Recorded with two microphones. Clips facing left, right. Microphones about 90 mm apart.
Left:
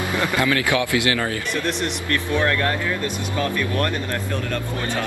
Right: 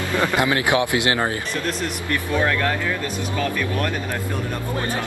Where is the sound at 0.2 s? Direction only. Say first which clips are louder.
Right 1 dB; 20° right (ahead or behind).